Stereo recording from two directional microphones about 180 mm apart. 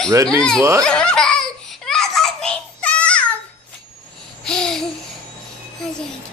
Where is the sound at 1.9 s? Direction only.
Centre (ahead or behind).